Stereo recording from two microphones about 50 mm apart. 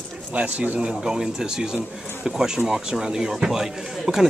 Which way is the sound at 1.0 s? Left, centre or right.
Centre.